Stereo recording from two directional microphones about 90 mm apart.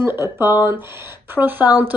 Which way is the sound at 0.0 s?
25° right (ahead or behind).